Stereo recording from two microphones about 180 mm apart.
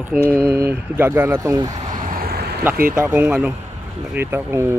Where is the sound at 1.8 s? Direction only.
45° right (ahead or behind); by 2.6 s 60° right (ahead or behind).